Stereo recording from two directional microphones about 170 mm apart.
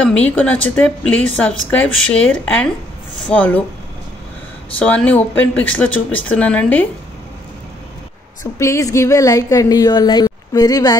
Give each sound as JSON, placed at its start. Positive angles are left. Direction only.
{"t": 0.0, "sound": "speech", "side_deg": 10}
{"t": 4.7, "sound": "speech", "side_deg": 10}
{"t": 8.5, "sound": "speech", "side_deg": 20}